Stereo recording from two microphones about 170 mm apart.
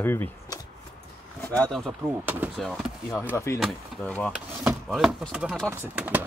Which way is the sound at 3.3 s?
15° left (ahead or behind).